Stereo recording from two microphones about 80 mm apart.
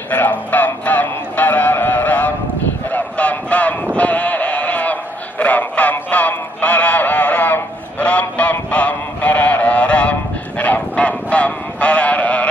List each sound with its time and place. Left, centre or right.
0.1 s music: left
2.9 s sheep: centre
5.4 s music: centre
10.6 s a sound: centre